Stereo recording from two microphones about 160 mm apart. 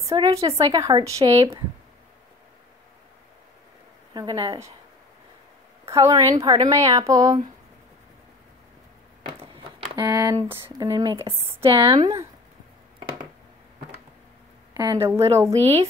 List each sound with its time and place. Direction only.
0.0 s speech: 25° right (ahead or behind)
0.3 s speech: 40° right (ahead or behind)
0.6 s speech: 25° right (ahead or behind)
4.1 s speech: 25° right (ahead or behind)
5.9 s a woman's voice: 20° right (ahead or behind)
9.4 s a sound: 35° right (ahead or behind)
10.0 s speech: 15° right (ahead or behind)
11.2 s speech: 40° right (ahead or behind)
11.8 s speech: 20° right (ahead or behind)
14.7 s a sound: 25° right (ahead or behind)
15.0 s a woman's voice: 15° right (ahead or behind)
15.5 s a woman's voice: 40° right (ahead or behind)